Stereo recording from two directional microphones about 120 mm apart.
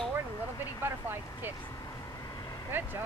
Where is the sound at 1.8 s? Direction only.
30° left (ahead or behind).